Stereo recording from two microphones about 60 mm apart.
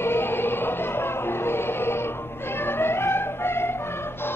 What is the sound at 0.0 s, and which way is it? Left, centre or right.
Music, left.